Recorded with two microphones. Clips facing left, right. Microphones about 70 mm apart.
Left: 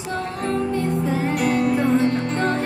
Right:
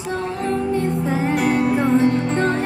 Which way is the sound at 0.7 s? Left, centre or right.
Right.